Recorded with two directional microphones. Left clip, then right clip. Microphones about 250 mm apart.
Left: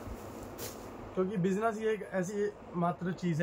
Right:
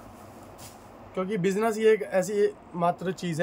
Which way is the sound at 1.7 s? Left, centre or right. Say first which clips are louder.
Right 11 dB; right.